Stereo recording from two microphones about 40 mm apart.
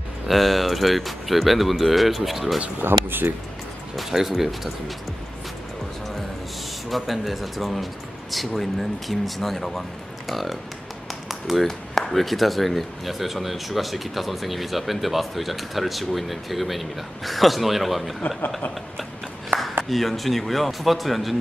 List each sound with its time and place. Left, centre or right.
0.3 s speech: centre
2.8 s speech: right
3.9 s speech: centre
6.9 s speech: centre
11.2 s tap: centre
11.6 s speech: centre
19.8 s speech: centre